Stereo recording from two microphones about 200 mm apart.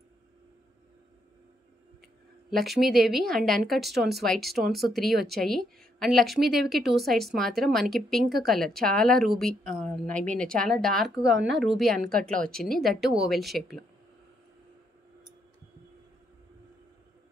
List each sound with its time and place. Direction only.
2.5 s a woman's voice: centre (ahead or behind)
11.3 s a woman's voice: 60° right (ahead or behind)
11.6 s a woman's voice: centre (ahead or behind)